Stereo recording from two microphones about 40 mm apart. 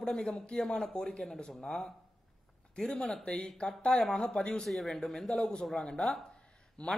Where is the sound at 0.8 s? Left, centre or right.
Centre.